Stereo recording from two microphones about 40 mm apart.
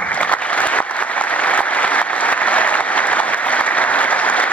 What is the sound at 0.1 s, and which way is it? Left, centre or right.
Applause, left.